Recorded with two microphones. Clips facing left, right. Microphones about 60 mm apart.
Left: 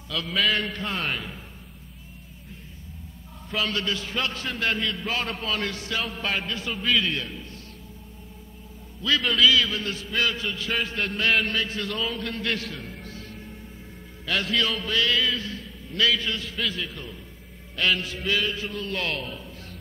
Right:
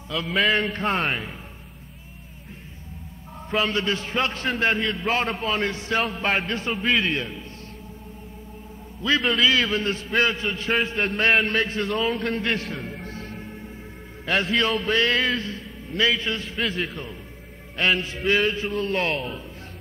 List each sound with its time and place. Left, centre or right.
0.3 s a man's voice: centre
0.6 s a man's voice: right
3.4 s a man's voice: right
6.2 s a man's voice: right
9.2 s a man's voice: centre
9.5 s a man's voice: right